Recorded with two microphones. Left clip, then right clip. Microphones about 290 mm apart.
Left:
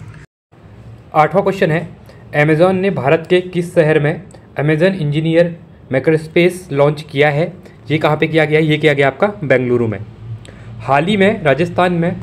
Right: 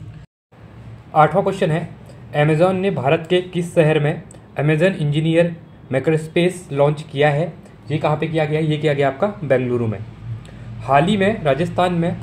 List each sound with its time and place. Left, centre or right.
1.1 s a man's voice: centre